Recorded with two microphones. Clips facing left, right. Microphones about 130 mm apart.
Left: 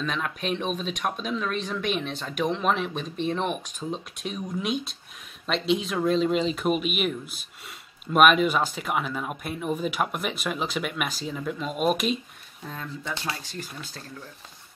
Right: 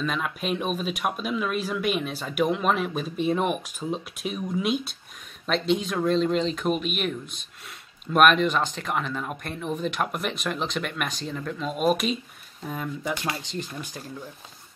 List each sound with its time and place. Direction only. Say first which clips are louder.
0.0 s speech: right 1 dB; 5° right (ahead or behind)
12.6 s speech: right 5 dB; 10° right (ahead or behind)